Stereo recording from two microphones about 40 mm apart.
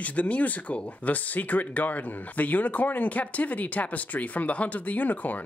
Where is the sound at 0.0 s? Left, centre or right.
Left.